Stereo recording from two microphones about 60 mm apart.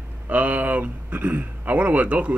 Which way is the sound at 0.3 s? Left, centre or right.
Right.